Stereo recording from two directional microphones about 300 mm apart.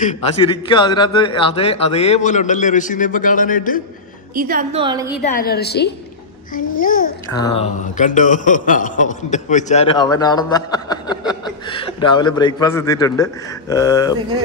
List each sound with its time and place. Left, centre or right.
0.0 s a man's voice: left
4.4 s a woman's voice: right
5.4 s a woman's voice: left
7.3 s a man's voice: centre